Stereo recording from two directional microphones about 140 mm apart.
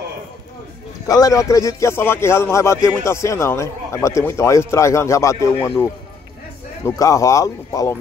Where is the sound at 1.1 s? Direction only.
25° left (ahead or behind).